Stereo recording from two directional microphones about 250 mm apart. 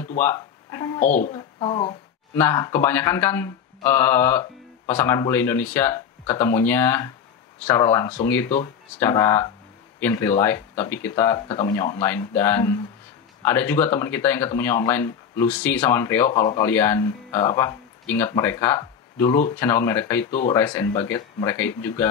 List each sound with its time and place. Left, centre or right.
0.2 s speech: centre
0.9 s speech: left
1.3 s speech: centre
2.3 s speech: centre